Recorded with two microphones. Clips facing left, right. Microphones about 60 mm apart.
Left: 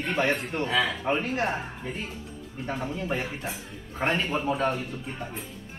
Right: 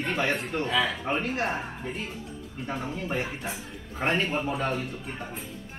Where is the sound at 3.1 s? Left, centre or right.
Centre.